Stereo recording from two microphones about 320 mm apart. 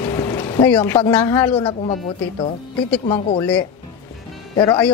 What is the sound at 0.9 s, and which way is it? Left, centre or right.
A woman's voice, centre.